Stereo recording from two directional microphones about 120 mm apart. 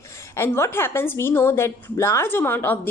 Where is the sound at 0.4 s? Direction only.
20° left (ahead or behind).